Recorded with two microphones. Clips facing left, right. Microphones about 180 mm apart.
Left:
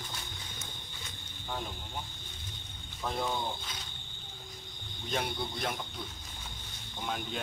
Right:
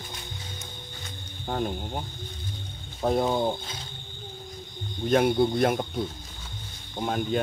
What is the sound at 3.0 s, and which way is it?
Speech, 50° right (ahead or behind).